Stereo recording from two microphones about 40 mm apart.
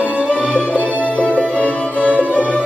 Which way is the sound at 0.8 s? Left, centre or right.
Right.